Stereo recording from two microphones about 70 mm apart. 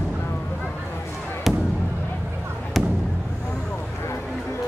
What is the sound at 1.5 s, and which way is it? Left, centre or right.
Fireworks, centre.